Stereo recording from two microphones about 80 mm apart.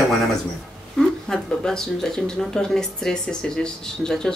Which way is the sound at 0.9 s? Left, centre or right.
Centre.